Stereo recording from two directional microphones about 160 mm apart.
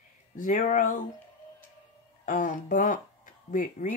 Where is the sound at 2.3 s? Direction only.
55° left (ahead or behind).